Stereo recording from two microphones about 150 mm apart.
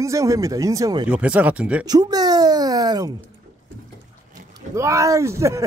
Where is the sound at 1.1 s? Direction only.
10° right (ahead or behind).